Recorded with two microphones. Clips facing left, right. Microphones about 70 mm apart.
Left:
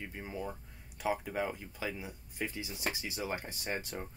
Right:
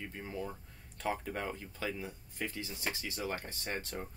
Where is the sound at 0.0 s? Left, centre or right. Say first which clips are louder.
Even; centre.